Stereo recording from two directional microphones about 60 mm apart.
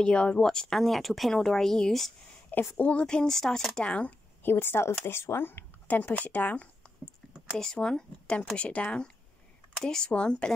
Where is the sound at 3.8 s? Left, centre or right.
Centre.